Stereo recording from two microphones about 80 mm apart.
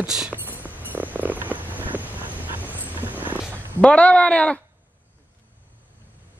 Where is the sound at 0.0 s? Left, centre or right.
Centre.